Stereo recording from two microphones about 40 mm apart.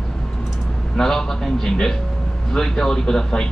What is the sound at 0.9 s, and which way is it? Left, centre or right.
Speech, centre.